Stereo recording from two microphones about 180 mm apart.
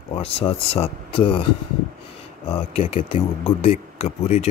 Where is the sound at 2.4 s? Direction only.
35° left (ahead or behind).